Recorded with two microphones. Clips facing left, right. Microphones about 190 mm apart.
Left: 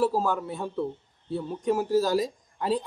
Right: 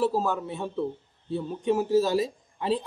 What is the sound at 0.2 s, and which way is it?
Speech, 25° right (ahead or behind).